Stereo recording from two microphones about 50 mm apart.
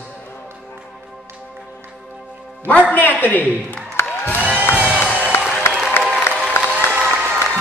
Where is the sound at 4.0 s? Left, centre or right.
Left.